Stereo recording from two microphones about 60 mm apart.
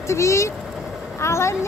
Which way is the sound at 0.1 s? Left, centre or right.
Left.